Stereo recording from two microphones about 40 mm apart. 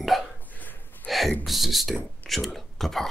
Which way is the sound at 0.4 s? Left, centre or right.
Left.